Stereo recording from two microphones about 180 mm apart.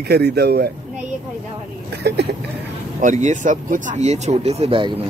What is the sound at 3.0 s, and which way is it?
Speech, 45° right (ahead or behind).